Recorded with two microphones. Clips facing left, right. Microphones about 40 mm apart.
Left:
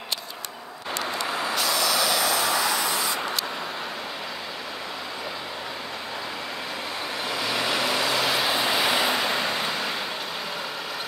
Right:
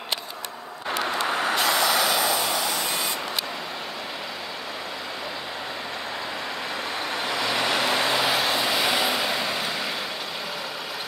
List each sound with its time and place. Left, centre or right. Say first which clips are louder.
1.1 s vehicle: right 3 dB; right
1.9 s vehicle: right 1 dB; centre
7.2 s vehicle: right 1 dB; centre